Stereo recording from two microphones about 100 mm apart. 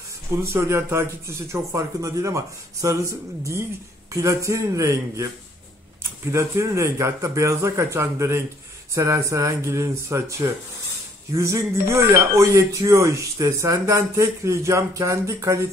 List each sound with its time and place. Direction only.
0.4 s speech: 25° right (ahead or behind)
6.3 s speech: 30° right (ahead or behind)